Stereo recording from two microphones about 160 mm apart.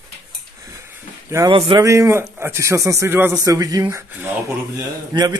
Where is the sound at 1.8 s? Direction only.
20° right (ahead or behind).